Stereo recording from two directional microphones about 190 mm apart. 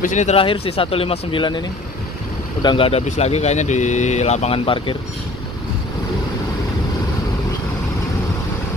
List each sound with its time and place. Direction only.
0.0 s speech: 40° left (ahead or behind)
2.6 s speech: 25° left (ahead or behind)